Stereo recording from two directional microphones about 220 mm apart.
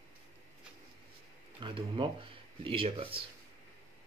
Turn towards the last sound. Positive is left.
turn(degrees=-25)  # may be behind; listen again after turning